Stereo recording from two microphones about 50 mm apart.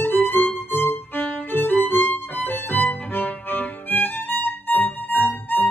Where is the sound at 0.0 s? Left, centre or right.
Left.